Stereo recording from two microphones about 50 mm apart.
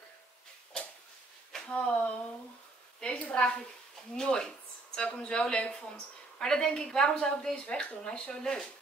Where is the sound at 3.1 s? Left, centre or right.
Left.